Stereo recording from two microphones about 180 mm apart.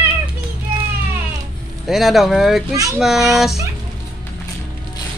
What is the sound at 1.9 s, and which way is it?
Speech, centre (ahead or behind).